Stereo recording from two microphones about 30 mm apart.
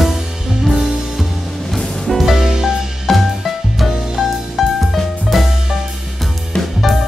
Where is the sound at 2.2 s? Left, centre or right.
Centre.